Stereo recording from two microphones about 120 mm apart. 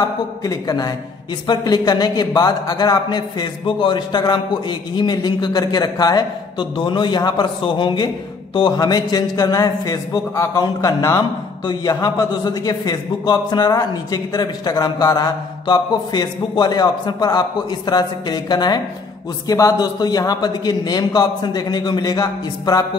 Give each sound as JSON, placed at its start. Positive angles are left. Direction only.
{"t": 0.4, "sound": "a man's voice", "side_deg": 30}